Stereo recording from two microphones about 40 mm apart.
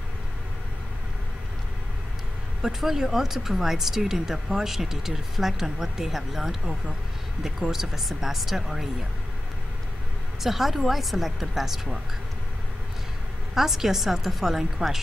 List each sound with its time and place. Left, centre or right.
2.6 s speech: centre
10.4 s speech: centre
13.6 s speech: centre